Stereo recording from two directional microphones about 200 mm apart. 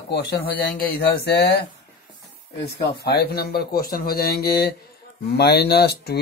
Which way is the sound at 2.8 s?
50° left (ahead or behind).